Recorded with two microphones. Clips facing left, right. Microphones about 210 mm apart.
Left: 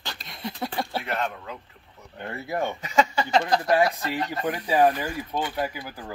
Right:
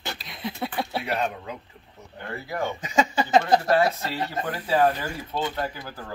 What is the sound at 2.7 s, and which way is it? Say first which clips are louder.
Speech: left 1 dB; 15° right (ahead or behind).